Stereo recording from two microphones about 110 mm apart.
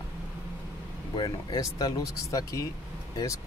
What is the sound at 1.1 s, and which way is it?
Speech, 45° left (ahead or behind).